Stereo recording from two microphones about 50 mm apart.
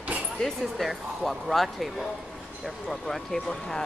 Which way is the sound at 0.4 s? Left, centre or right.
Centre.